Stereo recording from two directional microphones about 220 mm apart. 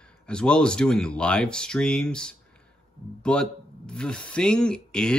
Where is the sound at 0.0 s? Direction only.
5° left (ahead or behind).